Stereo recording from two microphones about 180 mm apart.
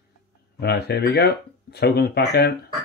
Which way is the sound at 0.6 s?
65° left (ahead or behind).